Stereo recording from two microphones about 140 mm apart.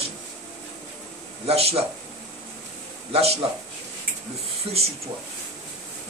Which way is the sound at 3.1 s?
45° right (ahead or behind).